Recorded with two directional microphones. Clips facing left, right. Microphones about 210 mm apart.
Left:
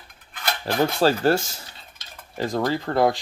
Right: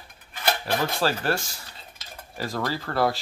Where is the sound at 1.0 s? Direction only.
25° left (ahead or behind).